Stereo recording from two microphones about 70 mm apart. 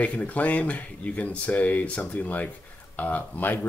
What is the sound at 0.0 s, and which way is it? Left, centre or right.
Speech, centre.